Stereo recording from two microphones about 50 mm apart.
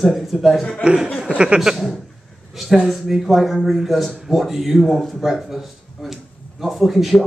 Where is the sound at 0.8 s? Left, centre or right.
Centre.